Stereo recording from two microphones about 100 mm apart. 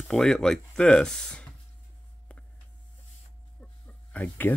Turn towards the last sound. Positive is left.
turn(degrees=15)  # may be behind; listen again after turning